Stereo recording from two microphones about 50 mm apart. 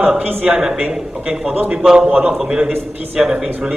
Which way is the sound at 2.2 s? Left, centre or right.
Centre.